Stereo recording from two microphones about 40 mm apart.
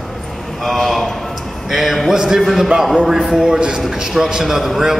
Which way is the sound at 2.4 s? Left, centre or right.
Centre.